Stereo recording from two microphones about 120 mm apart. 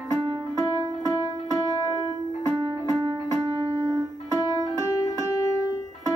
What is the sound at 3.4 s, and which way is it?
Music, 30° right (ahead or behind).